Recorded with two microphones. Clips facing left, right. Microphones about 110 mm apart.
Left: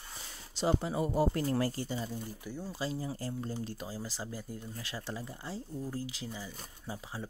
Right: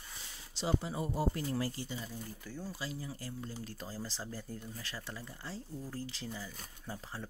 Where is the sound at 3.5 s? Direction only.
15° left (ahead or behind).